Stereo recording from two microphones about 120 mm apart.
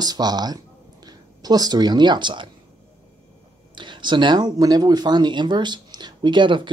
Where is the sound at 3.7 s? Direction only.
40° right (ahead or behind).